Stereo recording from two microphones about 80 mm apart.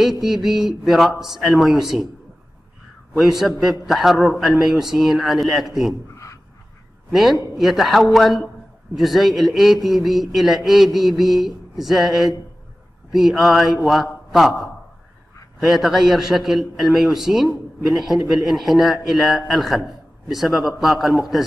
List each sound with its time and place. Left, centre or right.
0.0 s speech: centre
3.2 s speech: centre
6.1 s a sound: left
7.1 s a man's voice: centre